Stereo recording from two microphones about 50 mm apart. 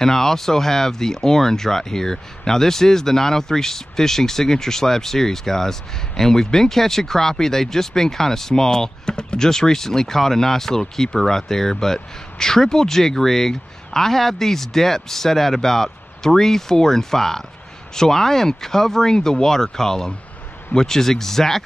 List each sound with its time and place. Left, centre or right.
0.0 s speech: centre